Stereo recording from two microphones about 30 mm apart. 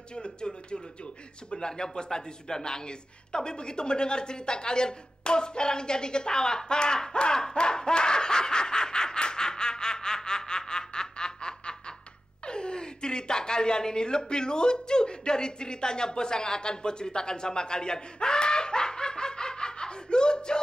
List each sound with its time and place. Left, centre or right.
0.1 s a woman's voice: left